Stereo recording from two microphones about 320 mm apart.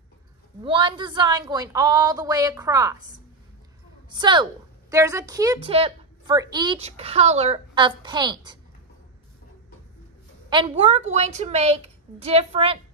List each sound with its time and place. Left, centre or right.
0.7 s a woman's voice: centre
4.1 s a woman's voice: centre
10.5 s a woman's voice: centre